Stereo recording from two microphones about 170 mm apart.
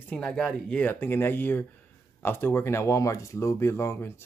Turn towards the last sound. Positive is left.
turn(degrees=15)  # may be behind; listen again after turning